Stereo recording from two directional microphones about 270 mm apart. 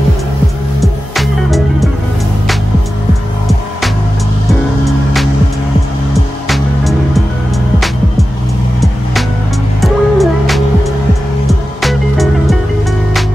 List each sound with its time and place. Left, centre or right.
0.7 s music: centre
4.5 s music: centre
6.5 s music: centre
9.8 s music: centre